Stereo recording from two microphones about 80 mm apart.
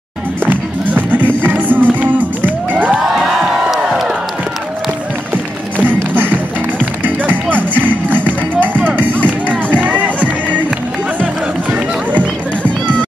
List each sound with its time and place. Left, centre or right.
0.5 s music: right
3.0 s music: centre
5.3 s music: right
7.5 s music: right
12.6 s music: centre